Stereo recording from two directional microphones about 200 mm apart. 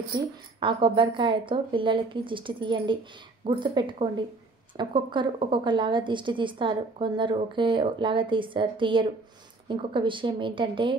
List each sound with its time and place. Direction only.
0.1 s a woman's voice: 25° right (ahead or behind)